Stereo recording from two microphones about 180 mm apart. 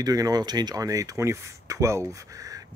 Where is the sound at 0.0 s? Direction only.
20° right (ahead or behind).